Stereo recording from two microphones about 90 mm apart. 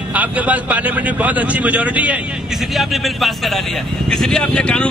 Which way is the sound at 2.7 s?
Centre (ahead or behind).